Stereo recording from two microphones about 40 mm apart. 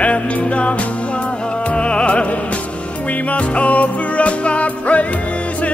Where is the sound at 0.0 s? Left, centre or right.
Left.